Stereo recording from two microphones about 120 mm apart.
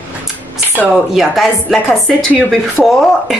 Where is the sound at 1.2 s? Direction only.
Centre (ahead or behind).